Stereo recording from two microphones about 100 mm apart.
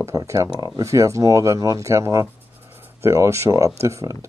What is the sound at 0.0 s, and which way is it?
Speech, 35° right (ahead or behind).